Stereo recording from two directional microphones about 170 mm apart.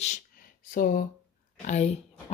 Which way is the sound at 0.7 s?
55° left (ahead or behind).